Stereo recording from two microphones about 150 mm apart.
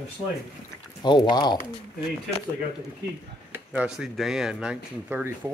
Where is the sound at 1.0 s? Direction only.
30° left (ahead or behind).